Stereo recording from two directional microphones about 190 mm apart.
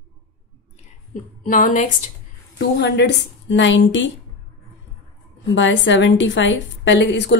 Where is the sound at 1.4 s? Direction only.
45° left (ahead or behind).